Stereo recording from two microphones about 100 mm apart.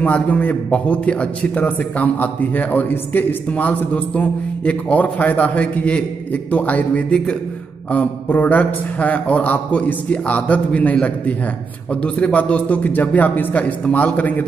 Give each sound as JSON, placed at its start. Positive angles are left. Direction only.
{"t": 0.0, "sound": "a man's voice", "side_deg": 15}